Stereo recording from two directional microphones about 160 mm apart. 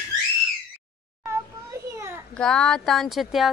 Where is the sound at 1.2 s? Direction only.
15° right (ahead or behind).